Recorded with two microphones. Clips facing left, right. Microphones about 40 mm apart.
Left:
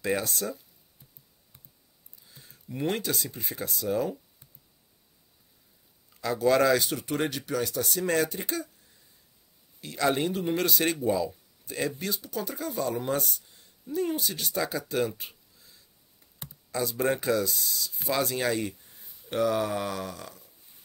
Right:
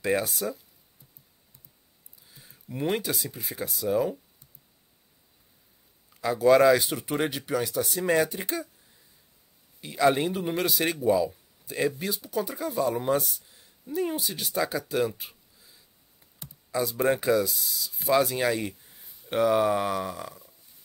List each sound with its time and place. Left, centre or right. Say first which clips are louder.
0.0 s speech: right 2 dB; centre
2.2 s speech: even; centre
6.3 s speech: right 4 dB; centre
9.8 s speech: right 4 dB; centre
19.2 s speech: right 4 dB; centre